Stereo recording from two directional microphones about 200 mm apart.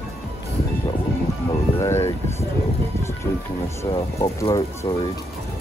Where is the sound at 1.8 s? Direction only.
15° left (ahead or behind).